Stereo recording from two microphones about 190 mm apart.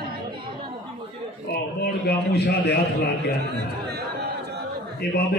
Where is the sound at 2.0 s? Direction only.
55° left (ahead or behind).